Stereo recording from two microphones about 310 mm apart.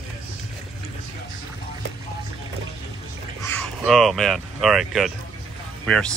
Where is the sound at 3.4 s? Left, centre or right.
Centre.